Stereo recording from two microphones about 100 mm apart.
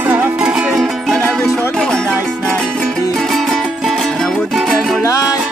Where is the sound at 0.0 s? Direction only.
20° right (ahead or behind).